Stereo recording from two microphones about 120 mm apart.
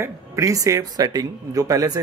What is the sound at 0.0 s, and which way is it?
Speech, 25° right (ahead or behind).